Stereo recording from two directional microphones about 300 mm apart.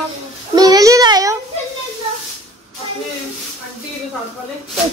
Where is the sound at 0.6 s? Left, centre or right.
Centre.